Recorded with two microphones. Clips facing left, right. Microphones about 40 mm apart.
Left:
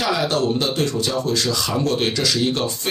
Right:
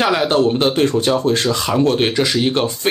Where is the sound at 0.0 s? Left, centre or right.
Right.